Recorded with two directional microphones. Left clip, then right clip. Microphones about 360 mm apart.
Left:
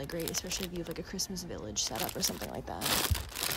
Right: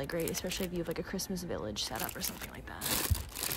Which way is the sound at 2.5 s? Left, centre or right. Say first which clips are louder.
Left 6 dB; centre.